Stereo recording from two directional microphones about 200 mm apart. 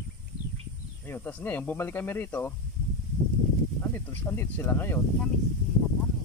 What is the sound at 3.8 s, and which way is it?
Speech, 10° left (ahead or behind).